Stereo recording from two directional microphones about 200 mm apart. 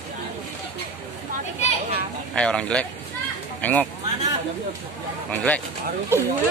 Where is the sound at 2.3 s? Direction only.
5° left (ahead or behind).